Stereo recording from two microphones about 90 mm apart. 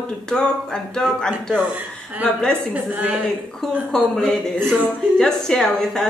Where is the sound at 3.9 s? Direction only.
5° left (ahead or behind).